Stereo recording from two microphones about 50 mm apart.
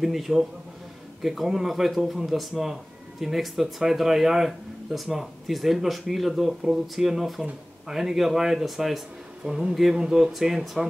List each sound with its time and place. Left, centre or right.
0.0 s speech: centre
9.4 s speech: centre